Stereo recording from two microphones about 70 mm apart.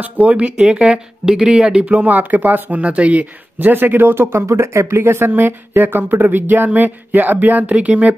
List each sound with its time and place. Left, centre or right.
0.0 s speech: right